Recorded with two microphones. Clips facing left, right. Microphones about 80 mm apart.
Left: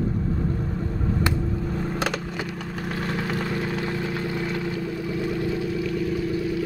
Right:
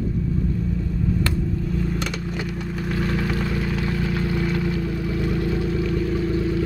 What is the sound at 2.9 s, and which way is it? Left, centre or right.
Vehicle, left.